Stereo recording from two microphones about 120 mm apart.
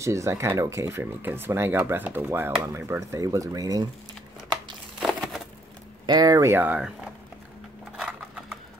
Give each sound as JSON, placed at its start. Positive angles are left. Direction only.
{"t": 0.0, "sound": "speech", "side_deg": -25}
{"t": 5.0, "sound": "a sound", "side_deg": 0}
{"t": 6.0, "sound": "speech", "side_deg": -35}
{"t": 6.5, "sound": "speech", "side_deg": -15}
{"t": 8.0, "sound": "sewing machine", "side_deg": -5}